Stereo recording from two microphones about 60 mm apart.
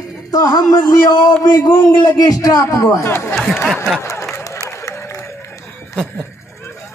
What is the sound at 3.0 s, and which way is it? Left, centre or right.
Speech, left.